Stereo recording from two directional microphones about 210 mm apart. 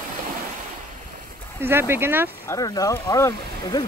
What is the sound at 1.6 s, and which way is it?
Speech, 10° right (ahead or behind).